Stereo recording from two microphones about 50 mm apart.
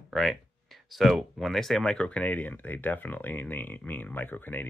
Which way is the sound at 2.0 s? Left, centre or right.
Left.